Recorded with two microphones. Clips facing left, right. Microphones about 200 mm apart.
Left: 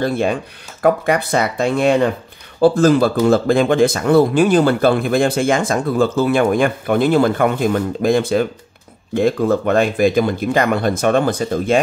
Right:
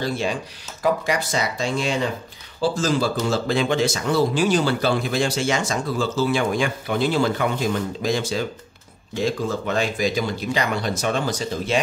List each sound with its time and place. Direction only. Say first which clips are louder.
0.0 s speech: left 7 dB; 55° left (ahead or behind)